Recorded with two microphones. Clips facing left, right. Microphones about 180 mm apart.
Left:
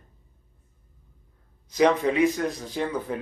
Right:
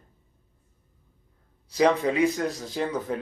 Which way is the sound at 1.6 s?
30° right (ahead or behind).